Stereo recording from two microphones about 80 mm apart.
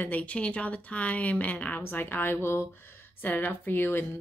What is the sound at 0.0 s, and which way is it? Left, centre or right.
Speech, centre.